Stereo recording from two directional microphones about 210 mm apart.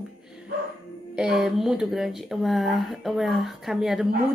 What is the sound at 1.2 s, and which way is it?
A woman's voice, centre (ahead or behind).